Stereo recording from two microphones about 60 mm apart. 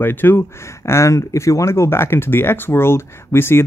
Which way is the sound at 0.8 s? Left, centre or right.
Left.